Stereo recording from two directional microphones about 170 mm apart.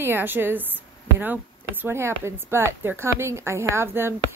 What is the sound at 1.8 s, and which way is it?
A woman's voice, 15° right (ahead or behind).